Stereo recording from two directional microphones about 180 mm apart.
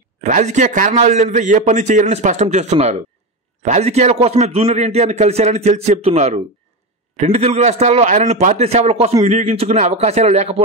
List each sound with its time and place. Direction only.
0.2 s a man's voice: 40° right (ahead or behind)